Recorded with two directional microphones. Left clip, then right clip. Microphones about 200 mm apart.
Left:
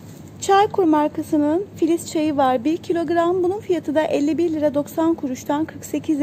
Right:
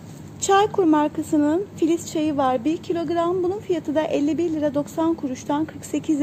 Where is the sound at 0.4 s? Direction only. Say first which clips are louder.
Left 2 dB; 10° left (ahead or behind).